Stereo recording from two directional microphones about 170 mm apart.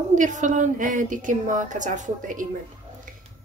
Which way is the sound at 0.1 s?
45° right (ahead or behind).